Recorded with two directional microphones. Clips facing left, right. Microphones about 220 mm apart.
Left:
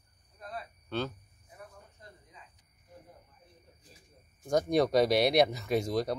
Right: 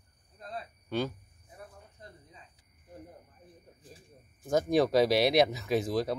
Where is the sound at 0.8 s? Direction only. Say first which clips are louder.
Right 2 dB; 10° right (ahead or behind).